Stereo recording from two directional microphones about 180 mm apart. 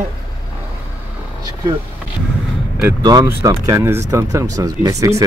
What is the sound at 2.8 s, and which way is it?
Speech, 20° right (ahead or behind).